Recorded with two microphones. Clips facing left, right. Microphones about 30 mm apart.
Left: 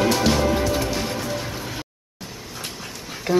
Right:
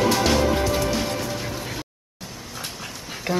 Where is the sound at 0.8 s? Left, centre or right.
Centre.